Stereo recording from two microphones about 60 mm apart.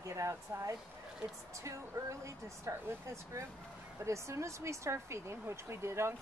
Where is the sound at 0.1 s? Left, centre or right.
Right.